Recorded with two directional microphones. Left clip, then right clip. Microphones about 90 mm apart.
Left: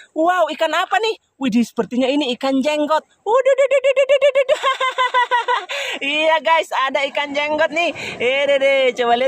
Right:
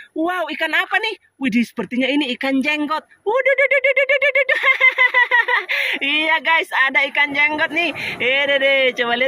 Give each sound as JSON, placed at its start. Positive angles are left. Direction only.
{"t": 0.2, "sound": "speech", "side_deg": 40}